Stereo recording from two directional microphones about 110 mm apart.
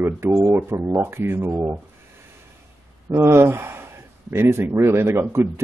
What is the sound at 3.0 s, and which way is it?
Speech, 25° right (ahead or behind).